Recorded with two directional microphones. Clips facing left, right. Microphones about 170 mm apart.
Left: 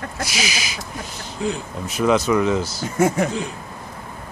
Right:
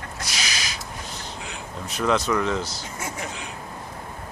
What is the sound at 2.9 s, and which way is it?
Speech, 55° left (ahead or behind).